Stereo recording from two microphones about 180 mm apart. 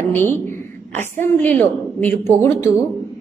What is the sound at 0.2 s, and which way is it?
A woman's voice, 10° left (ahead or behind).